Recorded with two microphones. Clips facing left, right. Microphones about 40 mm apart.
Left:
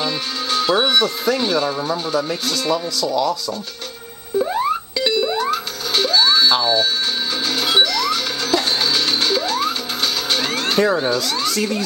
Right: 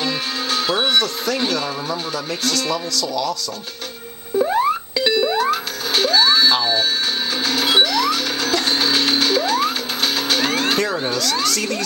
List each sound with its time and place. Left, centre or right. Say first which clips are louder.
0.0 s music: even; centre
0.7 s speech: left 1 dB; centre
4.4 s music: right 2 dB; centre
6.6 s speech: left 2 dB; centre
7.4 s music: right 1 dB; centre
11.4 s speech: left 1 dB; centre